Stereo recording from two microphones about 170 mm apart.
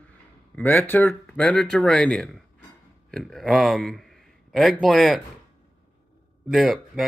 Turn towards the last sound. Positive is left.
turn(degrees=0)  # may be behind; listen again after turning